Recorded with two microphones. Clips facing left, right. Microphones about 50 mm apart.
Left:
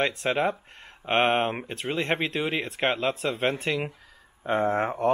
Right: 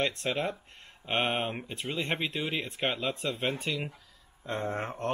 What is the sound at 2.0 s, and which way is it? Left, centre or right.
Speech, centre.